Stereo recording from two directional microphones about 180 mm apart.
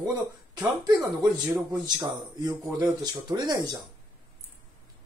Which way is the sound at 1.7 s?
20° right (ahead or behind).